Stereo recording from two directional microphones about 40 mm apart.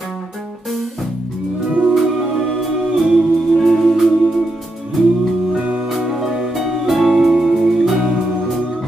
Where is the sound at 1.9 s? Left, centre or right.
Centre.